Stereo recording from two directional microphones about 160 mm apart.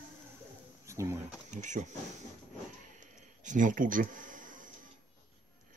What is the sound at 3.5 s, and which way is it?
Speech, 55° right (ahead or behind).